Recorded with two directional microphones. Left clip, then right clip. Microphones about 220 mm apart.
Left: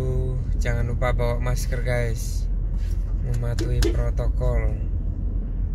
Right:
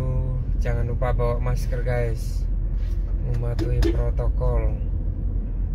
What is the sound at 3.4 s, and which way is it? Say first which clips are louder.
Speech: even; 20° left (ahead or behind).